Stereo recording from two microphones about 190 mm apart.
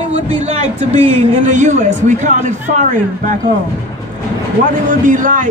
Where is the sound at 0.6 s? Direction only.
35° right (ahead or behind).